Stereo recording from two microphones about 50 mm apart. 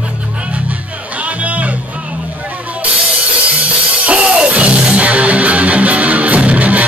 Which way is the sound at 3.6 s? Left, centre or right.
Right.